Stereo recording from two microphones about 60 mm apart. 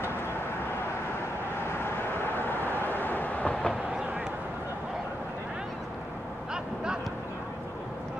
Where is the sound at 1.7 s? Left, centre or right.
Left; by 3.7 s centre.